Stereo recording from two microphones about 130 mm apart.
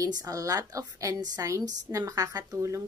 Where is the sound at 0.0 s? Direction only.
30° right (ahead or behind).